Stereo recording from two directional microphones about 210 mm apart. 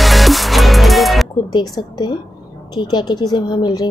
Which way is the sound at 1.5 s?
20° left (ahead or behind).